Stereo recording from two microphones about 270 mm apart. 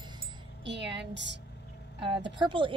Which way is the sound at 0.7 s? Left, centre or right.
Right.